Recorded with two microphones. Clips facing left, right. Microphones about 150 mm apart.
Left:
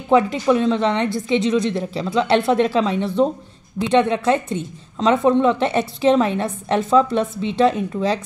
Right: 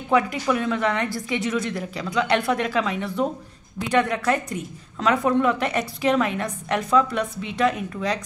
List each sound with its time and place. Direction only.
0.1 s a woman's voice: 25° left (ahead or behind)